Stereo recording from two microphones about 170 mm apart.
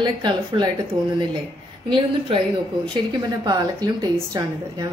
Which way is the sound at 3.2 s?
20° right (ahead or behind).